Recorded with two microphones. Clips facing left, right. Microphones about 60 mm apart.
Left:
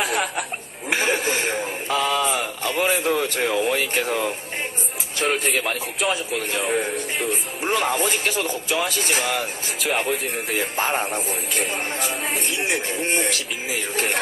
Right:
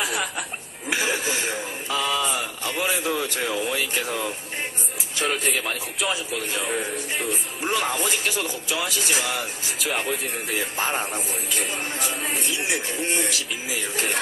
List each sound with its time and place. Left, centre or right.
0.0 s chuckle: left
5.2 s a man's voice: left
7.6 s speech: left
10.1 s speech: left
10.6 s speech: left
12.4 s speech: left
12.6 s speech: left